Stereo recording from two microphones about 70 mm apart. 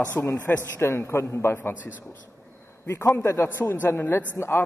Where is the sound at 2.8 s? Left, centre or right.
Left.